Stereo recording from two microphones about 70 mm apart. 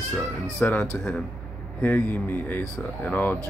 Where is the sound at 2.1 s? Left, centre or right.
Left.